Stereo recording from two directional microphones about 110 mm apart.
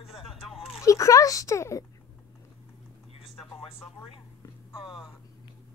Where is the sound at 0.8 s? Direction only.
30° left (ahead or behind).